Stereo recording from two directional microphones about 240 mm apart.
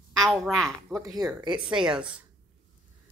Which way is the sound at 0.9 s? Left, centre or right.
Centre.